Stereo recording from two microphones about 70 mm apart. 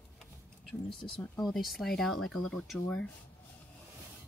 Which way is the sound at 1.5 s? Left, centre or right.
Centre.